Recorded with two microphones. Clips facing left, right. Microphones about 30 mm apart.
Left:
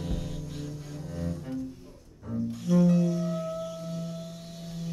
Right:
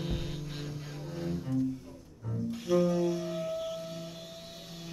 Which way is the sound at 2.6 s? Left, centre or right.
Centre.